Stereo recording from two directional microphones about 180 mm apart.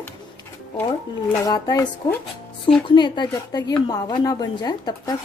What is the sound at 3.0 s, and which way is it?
Speech, 25° left (ahead or behind).